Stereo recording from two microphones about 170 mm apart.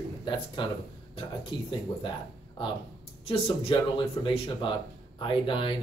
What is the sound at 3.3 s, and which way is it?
Speech, 35° left (ahead or behind).